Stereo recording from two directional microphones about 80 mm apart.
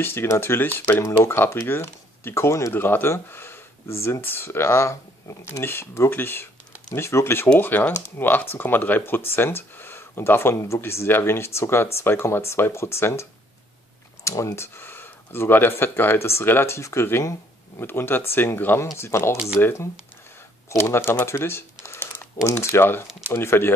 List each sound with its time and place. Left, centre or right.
0.0 s speech: left